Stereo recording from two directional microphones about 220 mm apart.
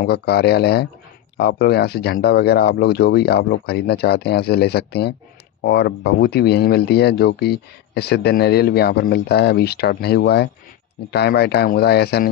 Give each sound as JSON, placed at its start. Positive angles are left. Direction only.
{"t": 0.0, "sound": "speech", "side_deg": 45}